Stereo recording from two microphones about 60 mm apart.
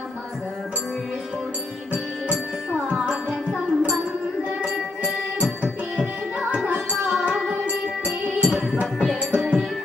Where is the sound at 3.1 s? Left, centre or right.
Centre.